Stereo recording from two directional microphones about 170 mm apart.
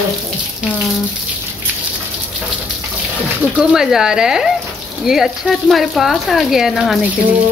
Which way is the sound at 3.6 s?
5° right (ahead or behind).